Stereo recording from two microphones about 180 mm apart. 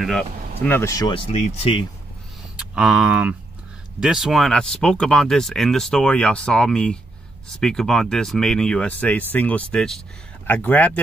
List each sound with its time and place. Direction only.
0.0 s speech: 10° left (ahead or behind); by 1.9 s 35° left (ahead or behind)
2.5 s speech: 5° right (ahead or behind)